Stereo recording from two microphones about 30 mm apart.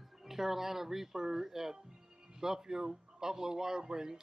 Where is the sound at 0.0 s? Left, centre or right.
Centre.